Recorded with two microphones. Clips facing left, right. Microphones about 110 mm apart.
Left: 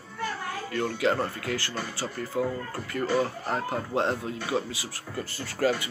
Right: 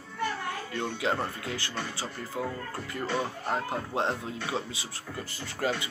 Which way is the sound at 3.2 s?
15° right (ahead or behind).